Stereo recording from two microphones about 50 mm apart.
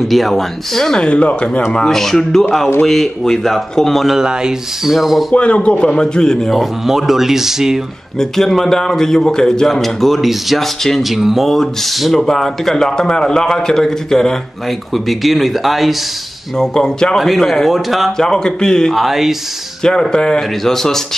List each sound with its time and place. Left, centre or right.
0.1 s a man's voice: centre
1.0 s a man's voice: left
1.7 s a man's voice: centre
4.2 s speech: centre
5.3 s a man's voice: left
6.5 s speech: centre
8.2 s a man's voice: centre
15.0 s a man's voice: centre
16.5 s a man's voice: centre
17.2 s a man's voice: centre
18.1 s a man's voice: centre
18.9 s a man's voice: centre
19.8 s a man's voice: centre